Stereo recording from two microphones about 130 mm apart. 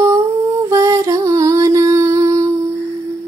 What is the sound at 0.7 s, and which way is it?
Music, 25° right (ahead or behind).